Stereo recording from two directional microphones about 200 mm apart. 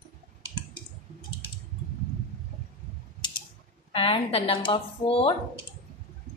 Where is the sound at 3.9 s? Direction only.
25° left (ahead or behind).